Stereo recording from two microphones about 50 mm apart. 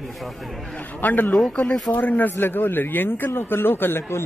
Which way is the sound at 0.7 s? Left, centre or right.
Left.